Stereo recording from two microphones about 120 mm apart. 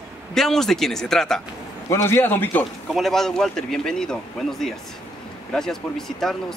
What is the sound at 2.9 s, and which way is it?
Speech, centre (ahead or behind).